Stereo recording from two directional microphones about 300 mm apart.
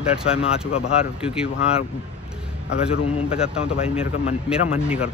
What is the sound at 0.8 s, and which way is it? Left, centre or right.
Speech, centre.